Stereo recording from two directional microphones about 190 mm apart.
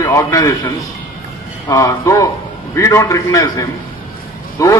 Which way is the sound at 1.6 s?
15° left (ahead or behind).